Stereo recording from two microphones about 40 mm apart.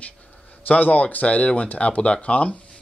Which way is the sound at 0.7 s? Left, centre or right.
Left.